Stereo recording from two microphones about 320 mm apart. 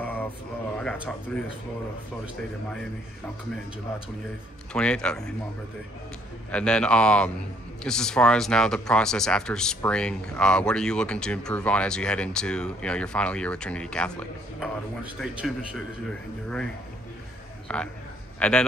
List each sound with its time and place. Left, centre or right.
0.0 s mantra: centre
0.7 s speech: centre
4.7 s speech: centre
6.5 s speech: centre
17.7 s speech: centre